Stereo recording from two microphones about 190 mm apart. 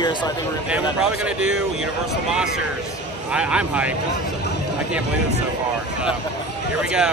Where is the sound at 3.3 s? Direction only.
5° right (ahead or behind).